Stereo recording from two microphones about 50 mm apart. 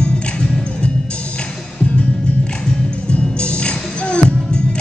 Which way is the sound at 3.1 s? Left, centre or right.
Left.